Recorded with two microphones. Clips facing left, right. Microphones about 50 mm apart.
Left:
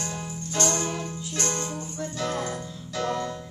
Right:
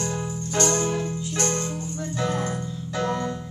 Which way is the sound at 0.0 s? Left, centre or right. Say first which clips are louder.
Right 5 dB; centre.